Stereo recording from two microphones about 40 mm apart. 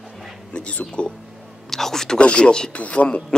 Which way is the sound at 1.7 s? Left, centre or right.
Centre.